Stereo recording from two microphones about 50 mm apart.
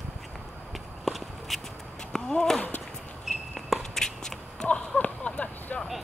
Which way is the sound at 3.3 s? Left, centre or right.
Centre.